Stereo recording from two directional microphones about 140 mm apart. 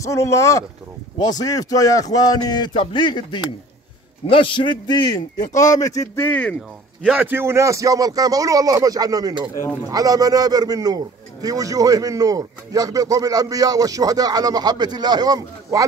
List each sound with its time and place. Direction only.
0.0 s a man's voice: 20° left (ahead or behind)
6.2 s speech: 10° left (ahead or behind)
7.1 s a man's voice: 10° right (ahead or behind)